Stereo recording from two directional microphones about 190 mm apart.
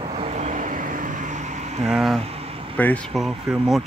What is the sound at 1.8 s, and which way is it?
Speech, centre (ahead or behind).